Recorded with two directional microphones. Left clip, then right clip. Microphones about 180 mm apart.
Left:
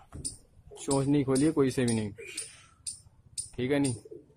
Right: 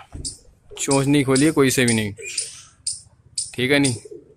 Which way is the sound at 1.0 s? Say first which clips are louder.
Right 8 dB; 5° right (ahead or behind).